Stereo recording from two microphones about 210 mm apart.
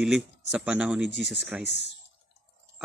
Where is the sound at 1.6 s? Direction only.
55° left (ahead or behind).